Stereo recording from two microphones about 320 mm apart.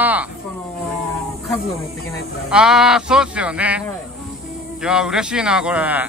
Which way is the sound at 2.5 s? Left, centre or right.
Centre.